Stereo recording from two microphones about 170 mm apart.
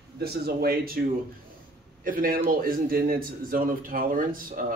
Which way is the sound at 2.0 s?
55° right (ahead or behind).